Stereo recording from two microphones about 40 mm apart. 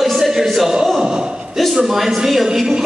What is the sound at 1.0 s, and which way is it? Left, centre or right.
Speech, right.